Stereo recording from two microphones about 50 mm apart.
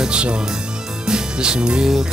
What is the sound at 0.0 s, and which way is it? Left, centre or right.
Music, centre.